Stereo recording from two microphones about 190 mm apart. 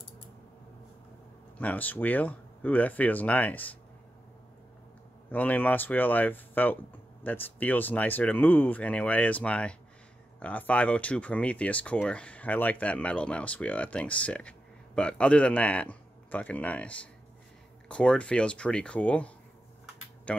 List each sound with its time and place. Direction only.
1.6 s speech: 10° left (ahead or behind)
5.3 s speech: 10° left (ahead or behind)